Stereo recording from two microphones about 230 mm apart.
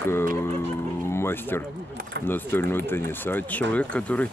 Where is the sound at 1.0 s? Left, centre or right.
Centre.